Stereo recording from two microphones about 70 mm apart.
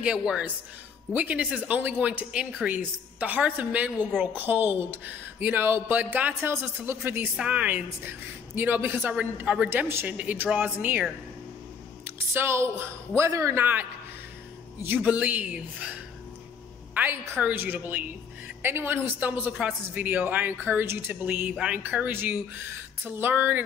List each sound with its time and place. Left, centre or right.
0.0 s speech: centre; by 7.0 s right
7.3 s speech: centre
9.7 s a woman's voice: right
10.0 s speech: right
12.0 s a woman's voice: right
15.0 s speech: centre
16.9 s a woman's voice: right
19.1 s speech: right
22.1 s speech: right